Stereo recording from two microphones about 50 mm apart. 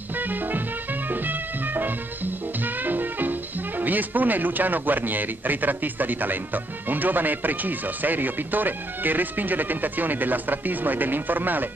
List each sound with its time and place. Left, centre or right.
1.2 s music: right
3.8 s speech: right